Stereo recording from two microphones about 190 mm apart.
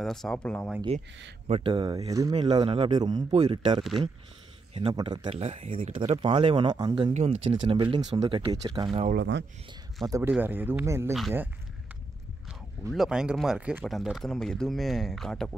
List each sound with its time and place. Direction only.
0.0 s speech: centre (ahead or behind)
1.5 s speech: 25° right (ahead or behind)
3.2 s speech: 35° right (ahead or behind)
6.2 s speech: 25° right (ahead or behind)
9.1 s speech: 70° right (ahead or behind)
10.0 s speech: 15° right (ahead or behind)
12.9 s speech: 5° right (ahead or behind)